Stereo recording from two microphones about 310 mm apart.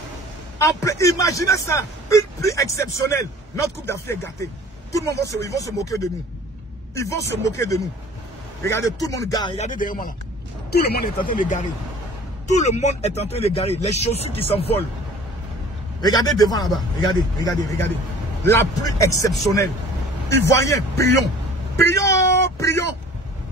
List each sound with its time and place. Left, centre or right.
0.6 s a man's voice: centre
9.8 s speech: left
16.0 s a man's voice: centre
19.3 s a man's voice: centre